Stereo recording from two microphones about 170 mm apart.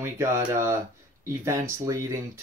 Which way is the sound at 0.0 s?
15° right (ahead or behind).